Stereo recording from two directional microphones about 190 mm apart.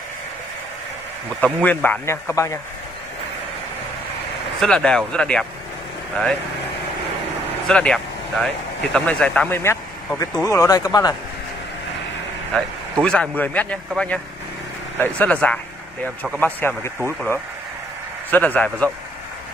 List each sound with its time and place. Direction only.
1.4 s a man's voice: 10° left (ahead or behind)
4.6 s a man's voice: 5° left (ahead or behind)
7.6 s speech: 5° left (ahead or behind); by 11.1 s 20° left (ahead or behind)
13.0 s a man's voice: 5° left (ahead or behind)
18.3 s a man's voice: 10° left (ahead or behind)